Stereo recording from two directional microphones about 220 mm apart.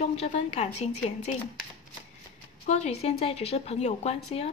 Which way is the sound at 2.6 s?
30° left (ahead or behind).